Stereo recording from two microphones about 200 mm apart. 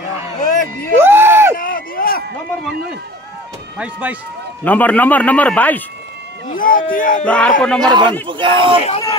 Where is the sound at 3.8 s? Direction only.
5° right (ahead or behind).